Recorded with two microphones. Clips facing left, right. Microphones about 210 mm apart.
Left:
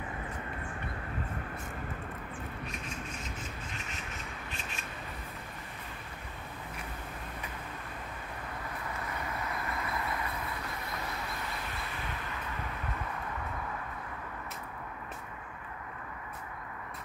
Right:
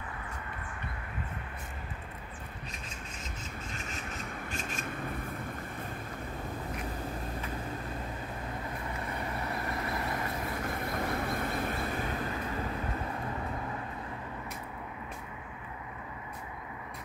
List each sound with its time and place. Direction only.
4.5 s rub: 50° right (ahead or behind)
9.9 s vehicle: 40° right (ahead or behind)